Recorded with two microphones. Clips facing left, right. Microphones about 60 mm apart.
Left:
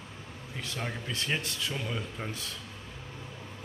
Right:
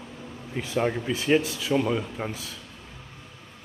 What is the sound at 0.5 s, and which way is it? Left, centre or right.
A man's voice, centre.